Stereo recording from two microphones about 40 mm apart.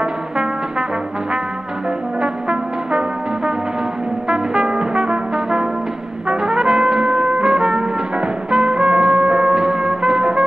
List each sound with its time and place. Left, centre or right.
0.0 s brass instrument: centre
2.2 s brass instrument: right
6.2 s trumpet: centre